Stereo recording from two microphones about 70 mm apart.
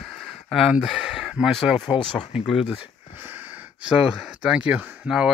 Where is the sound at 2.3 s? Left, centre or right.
Centre.